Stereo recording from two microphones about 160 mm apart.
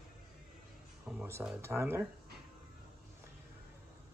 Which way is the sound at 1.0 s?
10° right (ahead or behind).